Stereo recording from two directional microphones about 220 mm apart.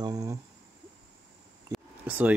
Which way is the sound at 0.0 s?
15° right (ahead or behind).